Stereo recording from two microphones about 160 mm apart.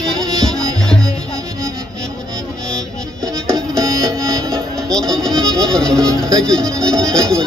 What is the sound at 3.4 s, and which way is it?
Music, 5° left (ahead or behind).